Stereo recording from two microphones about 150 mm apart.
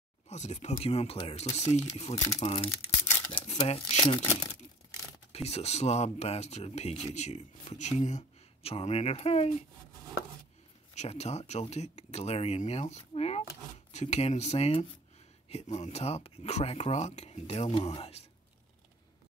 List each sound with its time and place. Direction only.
0.3 s speech: 50° left (ahead or behind)
5.3 s speech: 45° left (ahead or behind)
11.0 s speech: 45° left (ahead or behind)